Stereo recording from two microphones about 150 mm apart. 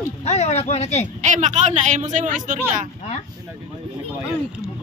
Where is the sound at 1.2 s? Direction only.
55° right (ahead or behind).